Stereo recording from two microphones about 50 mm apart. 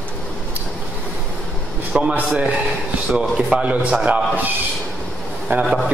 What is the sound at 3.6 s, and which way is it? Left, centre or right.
Speech, right.